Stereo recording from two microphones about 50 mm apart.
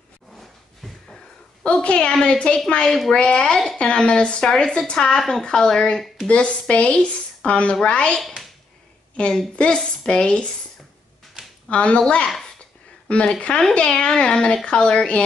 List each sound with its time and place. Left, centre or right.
1.6 s a woman's voice: left
11.7 s speech: left
13.1 s speech: left